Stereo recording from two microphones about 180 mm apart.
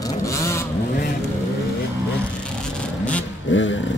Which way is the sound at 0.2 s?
15° left (ahead or behind).